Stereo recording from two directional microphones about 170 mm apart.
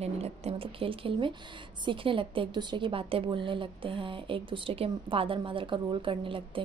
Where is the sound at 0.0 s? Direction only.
35° right (ahead or behind).